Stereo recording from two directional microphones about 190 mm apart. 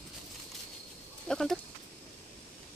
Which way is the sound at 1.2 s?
Centre (ahead or behind).